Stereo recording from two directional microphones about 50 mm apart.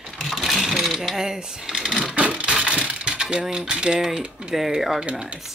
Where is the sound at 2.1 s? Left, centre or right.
Right.